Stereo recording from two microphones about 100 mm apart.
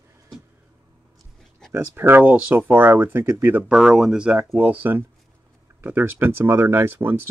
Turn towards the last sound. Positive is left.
turn(degrees=-25)  # may be behind; listen again after turning